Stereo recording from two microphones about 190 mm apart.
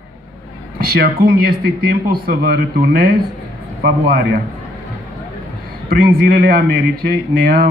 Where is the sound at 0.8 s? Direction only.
50° right (ahead or behind).